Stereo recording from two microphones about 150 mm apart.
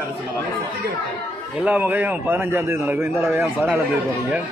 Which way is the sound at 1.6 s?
10° right (ahead or behind).